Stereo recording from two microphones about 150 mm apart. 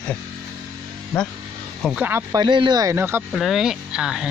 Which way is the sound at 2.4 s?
30° right (ahead or behind).